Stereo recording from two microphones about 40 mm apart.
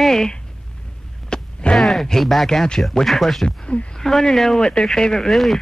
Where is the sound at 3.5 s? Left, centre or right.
Left.